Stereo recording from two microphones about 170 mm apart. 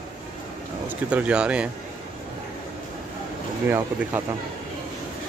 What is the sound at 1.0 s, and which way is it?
Speech, 5° right (ahead or behind).